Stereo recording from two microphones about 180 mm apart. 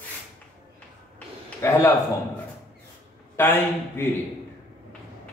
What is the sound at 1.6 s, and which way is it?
Speech, 15° left (ahead or behind).